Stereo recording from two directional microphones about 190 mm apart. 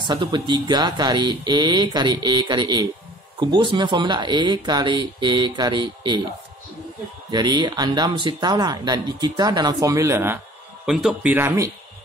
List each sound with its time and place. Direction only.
0.0 s speech: 25° right (ahead or behind)
7.2 s speech: 25° right (ahead or behind)